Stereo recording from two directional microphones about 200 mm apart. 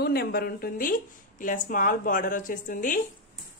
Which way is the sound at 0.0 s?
50° left (ahead or behind).